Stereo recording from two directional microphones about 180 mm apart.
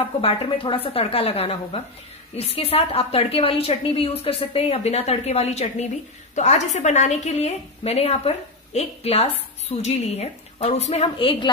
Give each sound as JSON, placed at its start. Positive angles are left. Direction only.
{"t": 0.2, "sound": "a woman's voice", "side_deg": 30}